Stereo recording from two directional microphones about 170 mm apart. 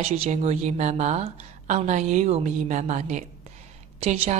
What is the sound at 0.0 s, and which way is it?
A woman's voice, 40° right (ahead or behind).